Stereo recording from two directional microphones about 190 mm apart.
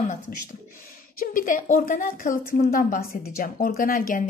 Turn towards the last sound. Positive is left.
turn(degrees=45)  # may be behind; listen again after turning